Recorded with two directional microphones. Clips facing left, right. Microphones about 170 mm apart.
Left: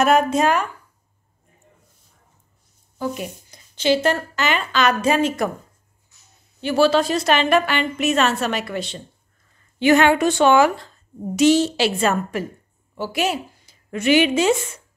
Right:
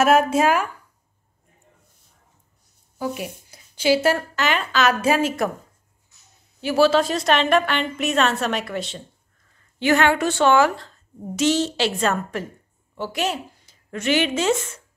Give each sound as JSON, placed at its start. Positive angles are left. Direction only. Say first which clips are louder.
{"t": 0.0, "sound": "a woman's voice", "louder": "even", "side_deg": -5}
{"t": 3.0, "sound": "speech", "louder": "left 1 dB", "side_deg": -5}
{"t": 6.6, "sound": "a woman's voice", "louder": "even", "side_deg": -5}
{"t": 9.8, "sound": "a woman's voice", "louder": "left 3 dB", "side_deg": 15}